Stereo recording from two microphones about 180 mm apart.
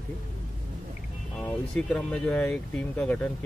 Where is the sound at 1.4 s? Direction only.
5° left (ahead or behind).